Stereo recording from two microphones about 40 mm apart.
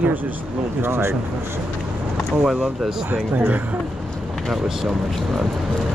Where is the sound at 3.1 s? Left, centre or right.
Right.